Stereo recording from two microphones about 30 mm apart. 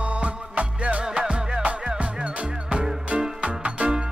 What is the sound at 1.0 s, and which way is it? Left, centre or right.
Music, right.